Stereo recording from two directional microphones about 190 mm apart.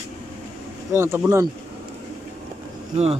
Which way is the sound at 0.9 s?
15° right (ahead or behind).